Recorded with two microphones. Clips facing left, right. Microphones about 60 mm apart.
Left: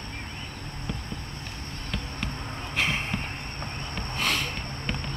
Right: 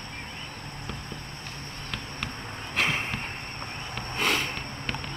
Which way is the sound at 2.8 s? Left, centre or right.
Centre.